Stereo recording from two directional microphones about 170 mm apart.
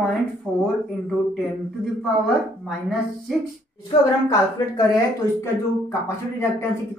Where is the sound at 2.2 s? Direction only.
Centre (ahead or behind).